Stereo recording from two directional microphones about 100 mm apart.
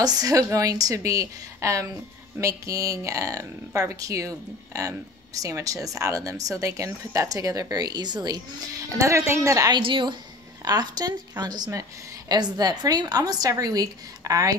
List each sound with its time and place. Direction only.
0.0 s speech: 40° right (ahead or behind)
9.8 s a woman's voice: 55° right (ahead or behind)
10.6 s a woman's voice: 40° right (ahead or behind)